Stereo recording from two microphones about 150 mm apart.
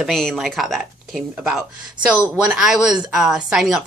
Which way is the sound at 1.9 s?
30° right (ahead or behind).